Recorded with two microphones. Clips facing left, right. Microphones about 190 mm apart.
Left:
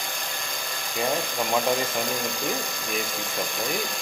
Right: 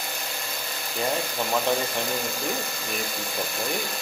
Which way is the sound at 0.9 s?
5° right (ahead or behind).